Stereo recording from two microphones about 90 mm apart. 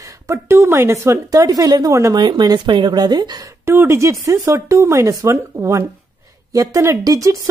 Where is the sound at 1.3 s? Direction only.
45° right (ahead or behind).